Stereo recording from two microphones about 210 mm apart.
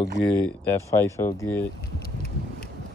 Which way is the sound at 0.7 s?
10° left (ahead or behind).